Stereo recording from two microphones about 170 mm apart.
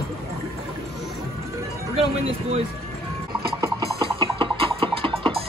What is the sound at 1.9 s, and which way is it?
Speech, 35° right (ahead or behind).